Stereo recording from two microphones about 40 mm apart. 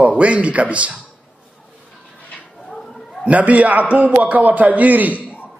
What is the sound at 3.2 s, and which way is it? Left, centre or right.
A man's voice, right.